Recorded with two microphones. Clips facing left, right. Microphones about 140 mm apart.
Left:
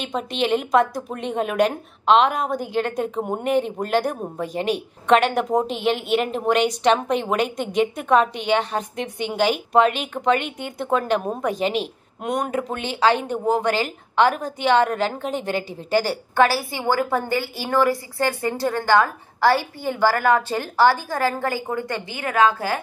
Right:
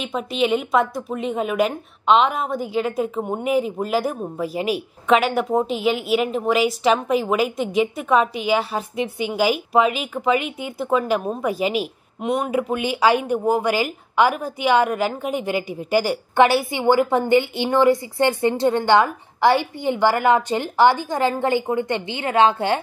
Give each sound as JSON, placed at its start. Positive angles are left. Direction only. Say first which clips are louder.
{"t": 0.0, "sound": "a woman's voice", "louder": "right 2 dB", "side_deg": 0}